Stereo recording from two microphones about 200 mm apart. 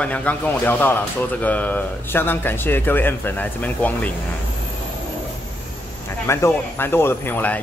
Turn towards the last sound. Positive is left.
turn(degrees=10)  # may be behind; listen again after turning